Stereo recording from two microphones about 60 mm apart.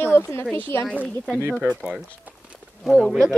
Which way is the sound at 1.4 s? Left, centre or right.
Right.